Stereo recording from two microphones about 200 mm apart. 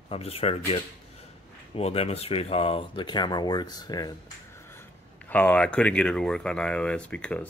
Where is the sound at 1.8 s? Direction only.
30° left (ahead or behind).